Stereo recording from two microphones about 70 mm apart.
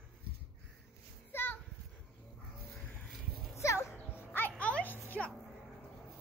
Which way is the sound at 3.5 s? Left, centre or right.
Left.